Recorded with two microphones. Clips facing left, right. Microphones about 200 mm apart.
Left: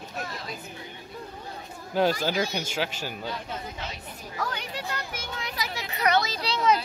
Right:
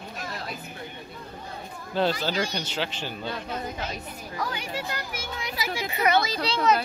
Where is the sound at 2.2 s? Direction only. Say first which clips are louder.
Left 1 dB; 10° left (ahead or behind).